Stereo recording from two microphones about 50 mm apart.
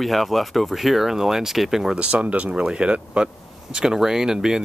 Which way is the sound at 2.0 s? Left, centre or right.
Right.